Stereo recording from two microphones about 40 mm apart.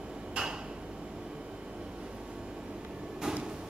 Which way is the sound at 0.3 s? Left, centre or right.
Right.